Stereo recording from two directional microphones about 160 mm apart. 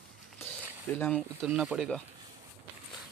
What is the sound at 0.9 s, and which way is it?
Speech, 10° left (ahead or behind).